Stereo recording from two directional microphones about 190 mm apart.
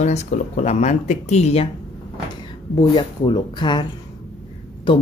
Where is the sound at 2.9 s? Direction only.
25° left (ahead or behind).